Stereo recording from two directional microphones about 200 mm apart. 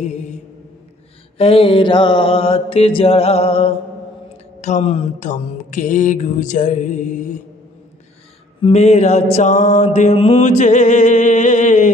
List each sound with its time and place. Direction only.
0.0 s mantra: 35° left (ahead or behind)
1.4 s mantra: 30° left (ahead or behind)
8.6 s mantra: 35° left (ahead or behind)